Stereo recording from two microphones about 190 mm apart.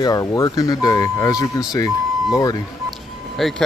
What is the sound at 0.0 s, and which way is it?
Speech, 20° left (ahead or behind).